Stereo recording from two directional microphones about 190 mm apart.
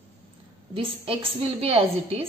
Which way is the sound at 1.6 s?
30° right (ahead or behind).